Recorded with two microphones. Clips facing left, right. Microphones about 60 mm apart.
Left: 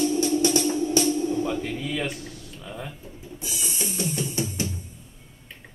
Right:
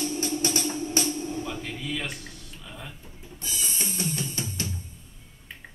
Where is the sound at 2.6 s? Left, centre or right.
Centre.